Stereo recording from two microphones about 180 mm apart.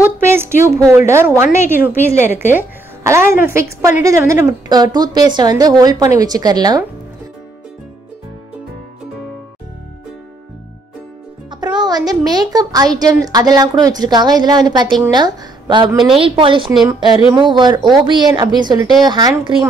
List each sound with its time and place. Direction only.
0.2 s a woman's voice: 15° right (ahead or behind)
11.6 s a woman's voice: 25° right (ahead or behind)